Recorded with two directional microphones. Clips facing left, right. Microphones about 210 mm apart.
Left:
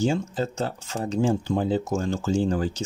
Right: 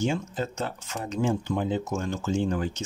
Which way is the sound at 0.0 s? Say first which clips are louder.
Left 4 dB; 30° left (ahead or behind).